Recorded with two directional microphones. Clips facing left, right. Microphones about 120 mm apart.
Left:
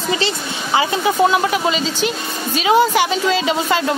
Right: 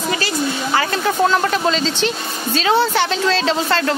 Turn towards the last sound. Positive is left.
turn(degrees=10)  # may be behind; listen again after turning